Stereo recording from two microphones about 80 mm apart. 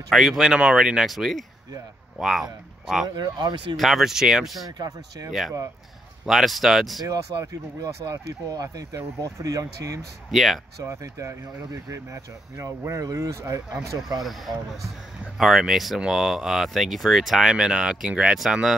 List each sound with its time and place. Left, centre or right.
0.1 s speech: centre
3.2 s speech: right
3.7 s speech: centre
4.6 s speech: right
6.2 s speech: centre
7.3 s speech: right
10.3 s speech: centre
11.0 s speech: right
14.2 s speech: centre